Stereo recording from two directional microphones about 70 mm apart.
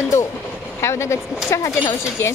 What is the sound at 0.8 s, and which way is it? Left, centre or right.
Speech, left.